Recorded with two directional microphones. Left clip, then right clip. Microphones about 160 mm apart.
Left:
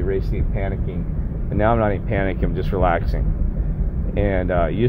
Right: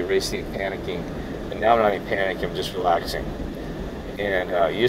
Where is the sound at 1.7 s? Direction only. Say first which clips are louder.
Right 4 dB; 30° left (ahead or behind).